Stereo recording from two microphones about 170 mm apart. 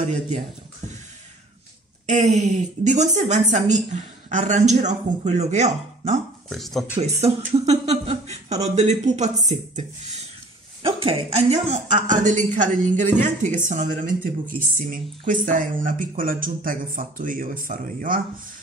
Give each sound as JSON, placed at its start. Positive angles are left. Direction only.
{"t": 2.2, "sound": "a woman's voice", "side_deg": -45}
{"t": 6.5, "sound": "speech", "side_deg": 0}
{"t": 7.0, "sound": "a woman's voice", "side_deg": -40}
{"t": 10.8, "sound": "a woman's voice", "side_deg": -30}